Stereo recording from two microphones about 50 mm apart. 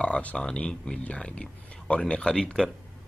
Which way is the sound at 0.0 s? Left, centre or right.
Left.